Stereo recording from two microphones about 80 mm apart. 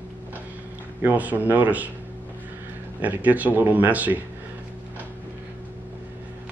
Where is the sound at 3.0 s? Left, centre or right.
Right.